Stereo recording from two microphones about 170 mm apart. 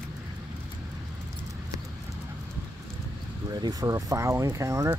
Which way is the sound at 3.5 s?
25° right (ahead or behind).